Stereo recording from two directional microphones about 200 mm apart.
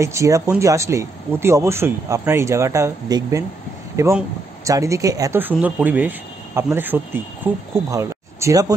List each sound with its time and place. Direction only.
0.0 s speech: 15° right (ahead or behind)